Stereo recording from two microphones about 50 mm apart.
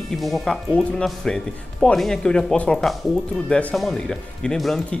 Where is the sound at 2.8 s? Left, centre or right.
Centre.